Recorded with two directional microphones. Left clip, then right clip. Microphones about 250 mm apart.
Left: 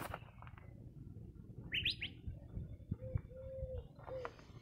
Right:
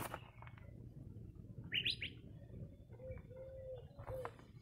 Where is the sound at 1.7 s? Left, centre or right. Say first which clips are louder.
Left 1 dB; left.